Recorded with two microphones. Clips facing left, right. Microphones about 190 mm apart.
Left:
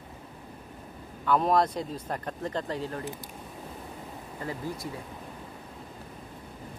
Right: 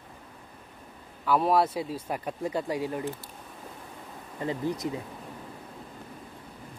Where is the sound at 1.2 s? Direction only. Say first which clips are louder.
Even; 5° right (ahead or behind).